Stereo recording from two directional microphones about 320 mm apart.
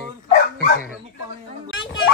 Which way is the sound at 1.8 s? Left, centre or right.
Left.